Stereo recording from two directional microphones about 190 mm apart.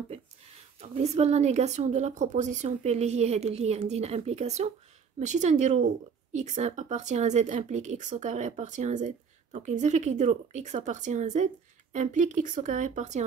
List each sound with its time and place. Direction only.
0.7 s a woman's voice: 35° right (ahead or behind)